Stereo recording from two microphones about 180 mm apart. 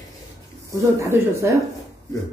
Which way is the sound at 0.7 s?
15° right (ahead or behind).